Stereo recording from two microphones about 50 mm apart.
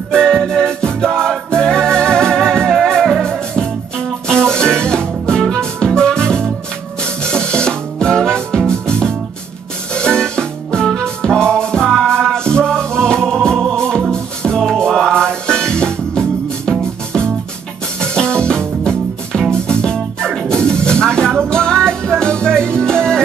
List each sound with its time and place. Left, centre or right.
0.1 s music: centre
18.0 s music: centre